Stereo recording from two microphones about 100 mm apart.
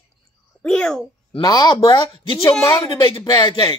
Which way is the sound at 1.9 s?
55° left (ahead or behind).